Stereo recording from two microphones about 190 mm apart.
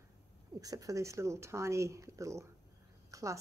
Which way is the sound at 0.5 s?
20° right (ahead or behind).